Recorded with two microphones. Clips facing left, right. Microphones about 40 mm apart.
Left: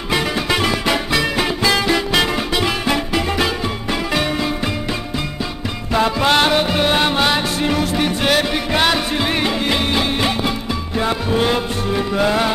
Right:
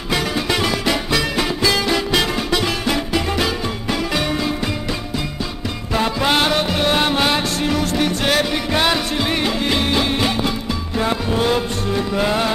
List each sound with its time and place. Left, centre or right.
0.1 s music: centre
6.0 s music: centre